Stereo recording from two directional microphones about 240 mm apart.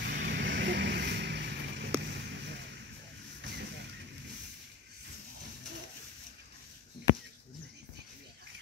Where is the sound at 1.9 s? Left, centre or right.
Right.